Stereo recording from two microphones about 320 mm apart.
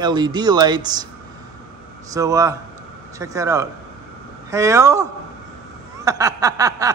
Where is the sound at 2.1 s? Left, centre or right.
Centre.